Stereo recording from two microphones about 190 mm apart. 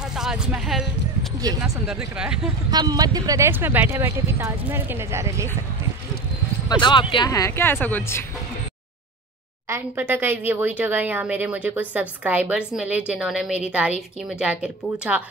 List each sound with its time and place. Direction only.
0.1 s speech: 5° right (ahead or behind)
2.7 s speech: 20° right (ahead or behind)
6.8 s speech: 25° left (ahead or behind)
9.7 s speech: 10° right (ahead or behind)